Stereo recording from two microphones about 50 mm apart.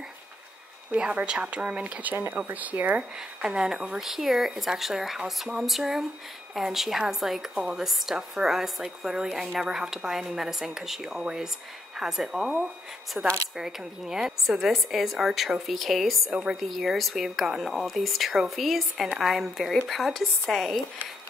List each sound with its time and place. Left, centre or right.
0.9 s speech: right
3.0 s a woman's voice: centre
16.3 s a woman's voice: centre
16.5 s a woman's voice: centre